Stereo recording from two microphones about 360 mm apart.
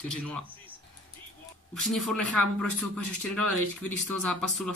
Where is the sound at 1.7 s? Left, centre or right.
Centre.